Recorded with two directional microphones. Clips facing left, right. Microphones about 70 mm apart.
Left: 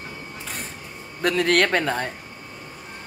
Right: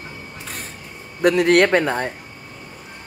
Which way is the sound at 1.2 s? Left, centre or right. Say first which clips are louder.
Right 5 dB; centre.